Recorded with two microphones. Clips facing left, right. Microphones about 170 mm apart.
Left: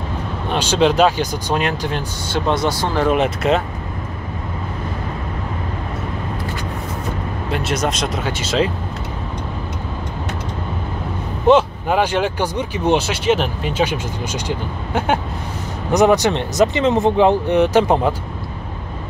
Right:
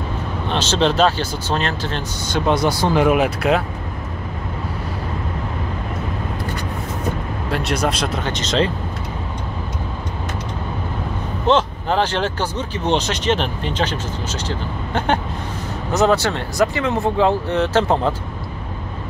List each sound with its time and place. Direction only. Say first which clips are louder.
0.5 s speech: left 3 dB; 10° left (ahead or behind)
2.4 s speech: right 2 dB; 10° right (ahead or behind)
3.2 s speech: even; 5° right (ahead or behind)
8.1 s speech: even; 5° left (ahead or behind)
11.4 s speech: left 4 dB; 10° left (ahead or behind)